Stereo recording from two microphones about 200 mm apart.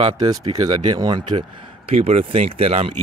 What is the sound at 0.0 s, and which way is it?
Speech, 20° right (ahead or behind).